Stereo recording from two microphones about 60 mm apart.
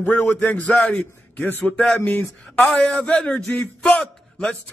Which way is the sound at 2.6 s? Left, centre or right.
Centre.